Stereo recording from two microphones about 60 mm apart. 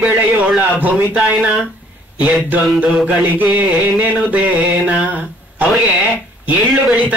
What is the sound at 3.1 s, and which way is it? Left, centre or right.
Music, right.